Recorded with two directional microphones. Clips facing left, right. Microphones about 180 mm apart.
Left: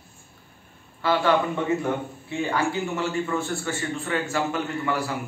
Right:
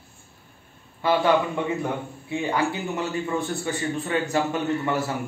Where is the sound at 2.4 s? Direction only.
15° right (ahead or behind).